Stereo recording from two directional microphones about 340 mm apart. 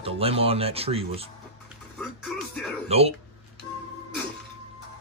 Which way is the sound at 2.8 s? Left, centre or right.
Centre.